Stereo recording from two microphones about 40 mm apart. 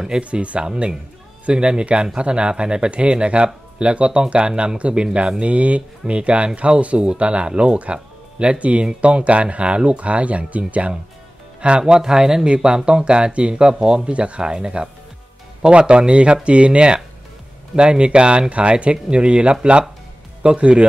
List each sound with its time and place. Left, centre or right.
0.2 s speech: right
11.8 s speech: centre